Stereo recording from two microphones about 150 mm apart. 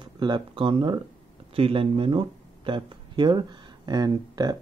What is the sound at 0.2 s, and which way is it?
Speech, 30° right (ahead or behind).